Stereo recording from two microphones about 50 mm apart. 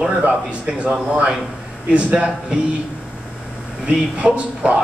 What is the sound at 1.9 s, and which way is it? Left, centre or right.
Speech, centre.